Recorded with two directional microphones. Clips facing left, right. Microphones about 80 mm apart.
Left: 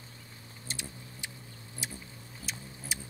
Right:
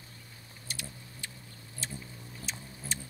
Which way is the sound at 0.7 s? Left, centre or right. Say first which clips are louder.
Left 1 dB; left.